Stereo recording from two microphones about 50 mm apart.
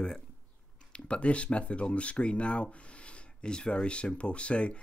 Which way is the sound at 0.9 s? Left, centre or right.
Left.